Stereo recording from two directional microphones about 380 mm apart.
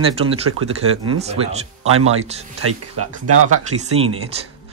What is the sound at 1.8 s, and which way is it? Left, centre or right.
Speech, right.